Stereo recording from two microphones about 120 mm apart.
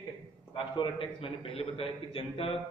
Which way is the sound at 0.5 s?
40° left (ahead or behind).